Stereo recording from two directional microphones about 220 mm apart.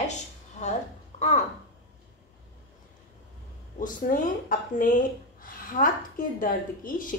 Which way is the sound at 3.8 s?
40° left (ahead or behind).